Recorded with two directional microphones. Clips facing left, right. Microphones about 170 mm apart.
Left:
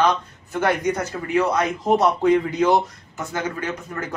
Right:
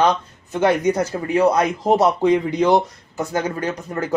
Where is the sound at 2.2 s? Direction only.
15° right (ahead or behind).